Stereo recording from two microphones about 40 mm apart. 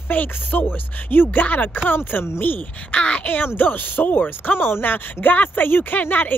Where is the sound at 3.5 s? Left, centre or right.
Left.